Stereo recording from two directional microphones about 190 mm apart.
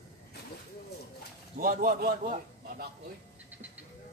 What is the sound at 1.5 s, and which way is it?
A man's voice, 50° right (ahead or behind).